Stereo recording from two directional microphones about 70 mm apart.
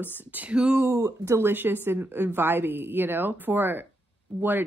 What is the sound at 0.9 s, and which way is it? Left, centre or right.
A woman's voice, right.